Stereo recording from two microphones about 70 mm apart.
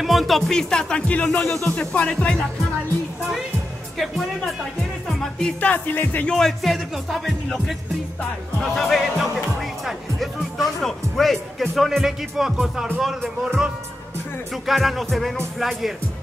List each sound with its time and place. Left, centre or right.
0.0 s speech: centre
1.4 s speech: centre
1.8 s speech: centre
5.0 s music: centre
5.6 s music: left
6.2 s speech: centre
8.5 s speech: centre
14.5 s speech: centre